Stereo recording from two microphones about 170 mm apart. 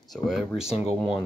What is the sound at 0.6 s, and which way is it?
Speech, 40° left (ahead or behind).